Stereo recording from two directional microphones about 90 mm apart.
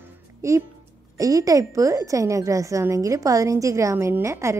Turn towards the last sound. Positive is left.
turn(degrees=-35)  # may be behind; listen again after turning